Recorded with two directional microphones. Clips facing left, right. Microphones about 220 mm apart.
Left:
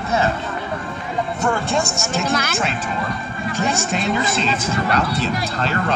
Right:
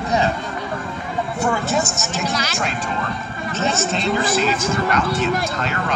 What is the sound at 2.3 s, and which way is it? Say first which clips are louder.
Speech: left 3 dB; 55° left (ahead or behind).